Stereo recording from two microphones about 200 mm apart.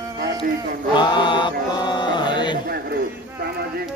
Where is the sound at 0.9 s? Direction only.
25° left (ahead or behind).